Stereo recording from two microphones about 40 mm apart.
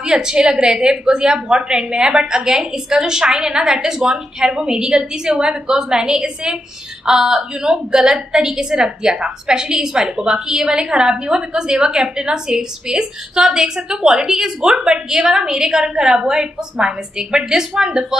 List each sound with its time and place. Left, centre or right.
0.0 s a woman's voice: centre